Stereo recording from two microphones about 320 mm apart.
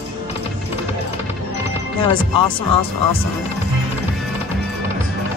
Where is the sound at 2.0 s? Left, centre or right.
Centre.